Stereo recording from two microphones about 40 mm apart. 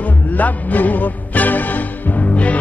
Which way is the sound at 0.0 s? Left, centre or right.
Left.